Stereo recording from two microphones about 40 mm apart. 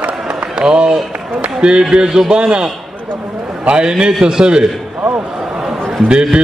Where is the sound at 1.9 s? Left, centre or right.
Centre.